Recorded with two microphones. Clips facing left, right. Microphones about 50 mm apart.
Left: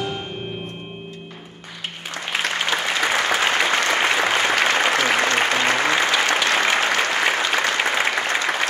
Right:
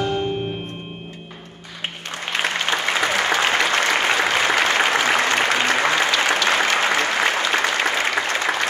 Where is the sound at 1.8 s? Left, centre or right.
Right.